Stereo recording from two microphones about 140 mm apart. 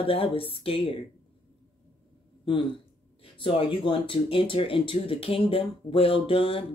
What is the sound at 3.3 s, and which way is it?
Speech, 35° left (ahead or behind).